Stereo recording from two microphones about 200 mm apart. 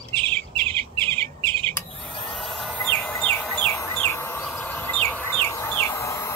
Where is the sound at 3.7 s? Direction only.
10° left (ahead or behind).